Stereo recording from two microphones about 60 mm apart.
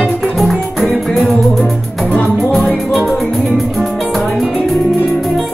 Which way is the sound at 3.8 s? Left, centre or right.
Centre.